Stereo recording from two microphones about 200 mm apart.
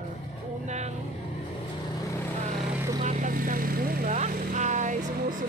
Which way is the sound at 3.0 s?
40° right (ahead or behind).